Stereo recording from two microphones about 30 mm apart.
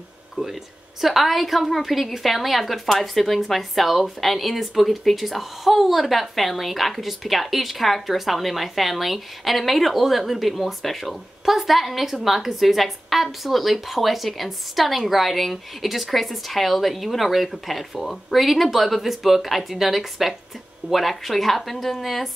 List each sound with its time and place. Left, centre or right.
0.4 s speech: right
1.0 s a woman's voice: centre